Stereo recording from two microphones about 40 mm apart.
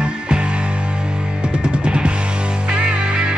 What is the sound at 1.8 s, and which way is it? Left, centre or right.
Music, right.